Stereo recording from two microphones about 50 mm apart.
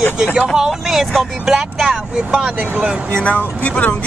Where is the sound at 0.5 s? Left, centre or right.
Centre.